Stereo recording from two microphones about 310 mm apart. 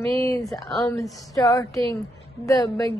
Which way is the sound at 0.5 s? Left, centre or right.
Centre.